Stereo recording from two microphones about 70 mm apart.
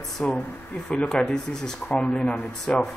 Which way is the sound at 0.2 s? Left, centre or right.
Left.